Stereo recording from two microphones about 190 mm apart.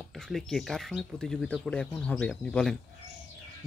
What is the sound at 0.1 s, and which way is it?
Speech, centre (ahead or behind).